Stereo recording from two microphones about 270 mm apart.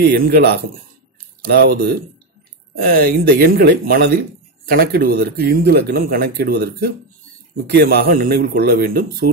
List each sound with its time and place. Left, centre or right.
0.1 s speech: right